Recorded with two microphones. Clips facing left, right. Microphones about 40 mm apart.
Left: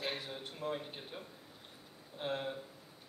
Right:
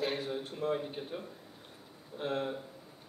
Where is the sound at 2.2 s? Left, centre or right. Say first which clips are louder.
Right 4 dB; centre.